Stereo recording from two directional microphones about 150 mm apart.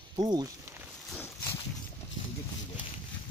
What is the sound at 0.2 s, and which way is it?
Speech, 25° right (ahead or behind).